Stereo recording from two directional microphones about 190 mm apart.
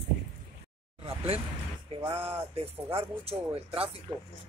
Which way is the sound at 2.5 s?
30° right (ahead or behind).